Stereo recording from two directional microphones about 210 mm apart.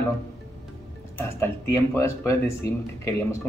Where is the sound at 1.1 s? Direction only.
10° left (ahead or behind).